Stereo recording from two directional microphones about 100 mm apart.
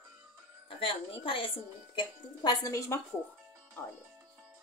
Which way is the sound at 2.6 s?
30° left (ahead or behind).